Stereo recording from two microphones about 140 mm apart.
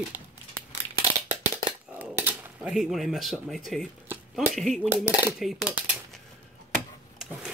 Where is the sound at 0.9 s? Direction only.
45° right (ahead or behind).